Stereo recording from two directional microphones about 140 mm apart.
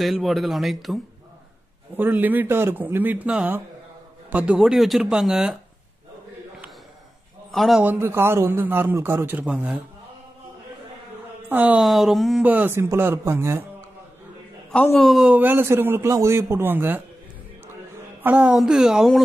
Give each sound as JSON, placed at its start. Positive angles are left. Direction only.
{"t": 0.0, "sound": "speech", "side_deg": 0}
{"t": 2.0, "sound": "a man's voice", "side_deg": -15}
{"t": 7.5, "sound": "speech", "side_deg": 0}
{"t": 7.8, "sound": "a man's voice", "side_deg": -15}
{"t": 11.4, "sound": "speech", "side_deg": -10}
{"t": 12.4, "sound": "a man's voice", "side_deg": -15}
{"t": 15.0, "sound": "speech", "side_deg": 0}
{"t": 15.3, "sound": "a man's voice", "side_deg": -15}
{"t": 18.2, "sound": "a man's voice", "side_deg": -10}